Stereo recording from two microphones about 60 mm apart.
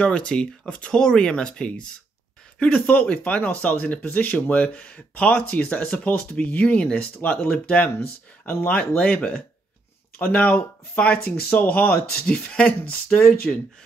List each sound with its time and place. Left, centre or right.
0.0 s speech: centre
13.1 s speech: left